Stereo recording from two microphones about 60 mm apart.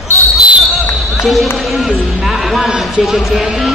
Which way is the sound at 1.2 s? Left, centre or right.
Centre.